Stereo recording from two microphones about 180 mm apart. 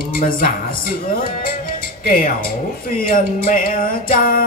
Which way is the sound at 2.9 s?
50° left (ahead or behind).